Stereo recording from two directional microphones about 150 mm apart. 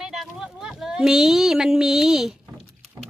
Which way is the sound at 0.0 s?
5° right (ahead or behind).